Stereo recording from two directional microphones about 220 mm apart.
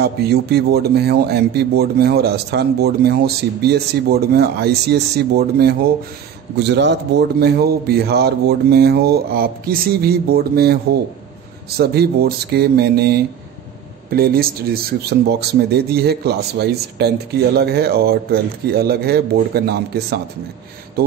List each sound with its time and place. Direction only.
0.0 s speech: 45° right (ahead or behind)